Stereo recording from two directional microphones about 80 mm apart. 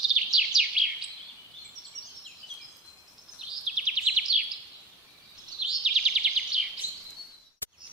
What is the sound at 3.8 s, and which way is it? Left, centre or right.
Bird vocalization, centre.